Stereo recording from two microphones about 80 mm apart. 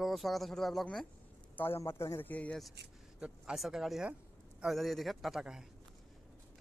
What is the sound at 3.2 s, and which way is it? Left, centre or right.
A man's voice, centre.